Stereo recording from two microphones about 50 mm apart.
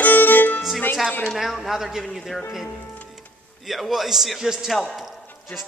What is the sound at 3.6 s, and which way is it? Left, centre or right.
A man's voice, centre.